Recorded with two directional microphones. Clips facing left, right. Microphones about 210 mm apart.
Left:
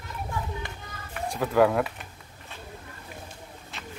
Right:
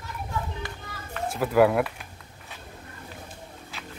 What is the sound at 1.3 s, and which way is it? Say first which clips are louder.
Speech: right 1 dB; 5° right (ahead or behind).